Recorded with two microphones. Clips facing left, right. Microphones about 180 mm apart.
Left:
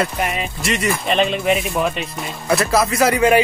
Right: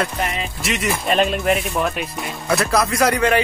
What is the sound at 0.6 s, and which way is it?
Speech, centre (ahead or behind).